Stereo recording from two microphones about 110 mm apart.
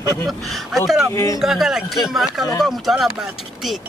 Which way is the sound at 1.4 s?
5° right (ahead or behind).